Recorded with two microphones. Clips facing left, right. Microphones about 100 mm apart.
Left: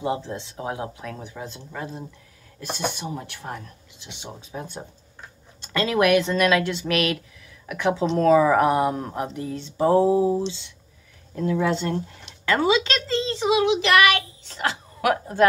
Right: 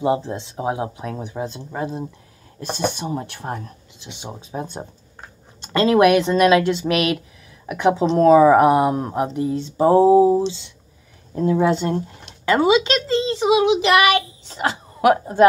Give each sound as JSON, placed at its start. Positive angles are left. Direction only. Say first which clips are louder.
{"t": 0.0, "sound": "speech", "louder": "right 6 dB", "side_deg": -25}
{"t": 4.0, "sound": "speech", "louder": "right 4 dB", "side_deg": -20}
{"t": 11.7, "sound": "a child's voice", "louder": "right 4 dB", "side_deg": -15}